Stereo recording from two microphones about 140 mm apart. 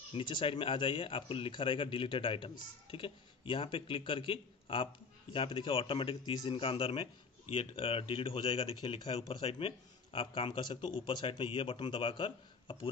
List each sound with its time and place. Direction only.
0.1 s speech: 35° left (ahead or behind)